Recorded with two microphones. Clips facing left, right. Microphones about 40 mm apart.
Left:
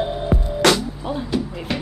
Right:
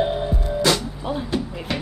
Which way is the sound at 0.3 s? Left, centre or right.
Left.